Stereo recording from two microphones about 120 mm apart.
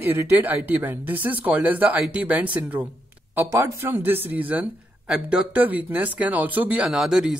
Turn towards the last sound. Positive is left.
turn(degrees=-5)  # may be behind; listen again after turning